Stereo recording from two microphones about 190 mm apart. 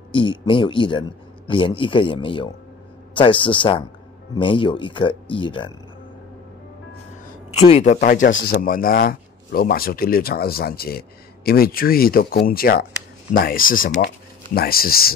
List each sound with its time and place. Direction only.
0.1 s speech: 25° left (ahead or behind)
7.5 s a man's voice: 35° left (ahead or behind); by 15.1 s 50° left (ahead or behind)